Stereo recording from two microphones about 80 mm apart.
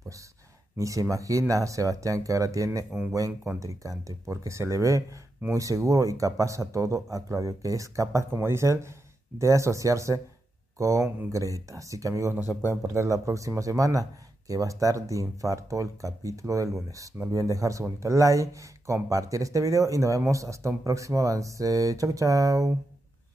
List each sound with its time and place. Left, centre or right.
0.7 s speech: right